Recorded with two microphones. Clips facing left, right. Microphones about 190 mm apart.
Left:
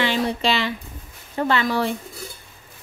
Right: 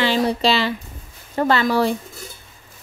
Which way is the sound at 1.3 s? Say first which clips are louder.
Right 3 dB; 45° right (ahead or behind).